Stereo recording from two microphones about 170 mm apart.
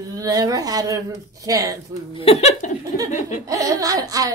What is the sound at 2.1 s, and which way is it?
Speech, 35° left (ahead or behind).